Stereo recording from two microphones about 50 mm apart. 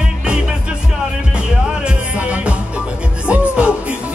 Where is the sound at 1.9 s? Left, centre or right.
Right.